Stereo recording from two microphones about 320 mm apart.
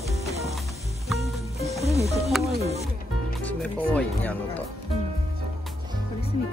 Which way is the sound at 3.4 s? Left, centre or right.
Centre.